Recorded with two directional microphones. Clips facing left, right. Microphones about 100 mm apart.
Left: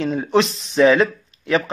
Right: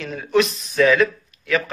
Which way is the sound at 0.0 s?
30° left (ahead or behind).